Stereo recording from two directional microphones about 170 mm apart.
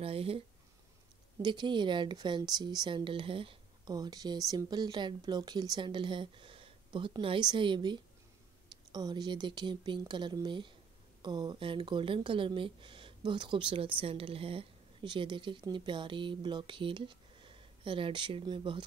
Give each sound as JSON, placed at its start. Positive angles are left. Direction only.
{"t": 0.0, "sound": "speech", "side_deg": -35}
{"t": 1.4, "sound": "speech", "side_deg": -25}